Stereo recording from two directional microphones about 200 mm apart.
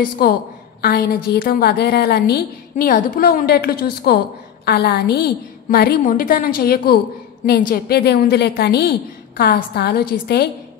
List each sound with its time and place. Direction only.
0.2 s a woman's voice: 50° left (ahead or behind)
2.7 s a woman's voice: 45° left (ahead or behind)